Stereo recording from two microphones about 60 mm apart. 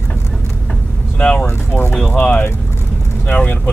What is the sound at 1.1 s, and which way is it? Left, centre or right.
Speech, centre.